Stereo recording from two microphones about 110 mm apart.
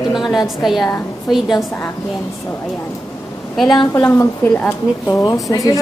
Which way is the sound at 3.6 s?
40° left (ahead or behind).